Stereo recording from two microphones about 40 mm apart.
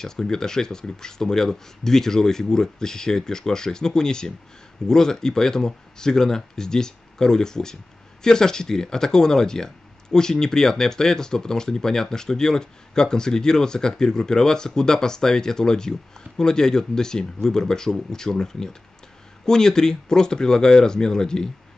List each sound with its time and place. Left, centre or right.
0.0 s speech: centre